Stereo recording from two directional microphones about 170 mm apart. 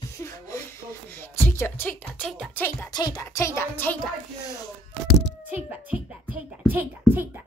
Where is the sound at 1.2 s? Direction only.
15° left (ahead or behind).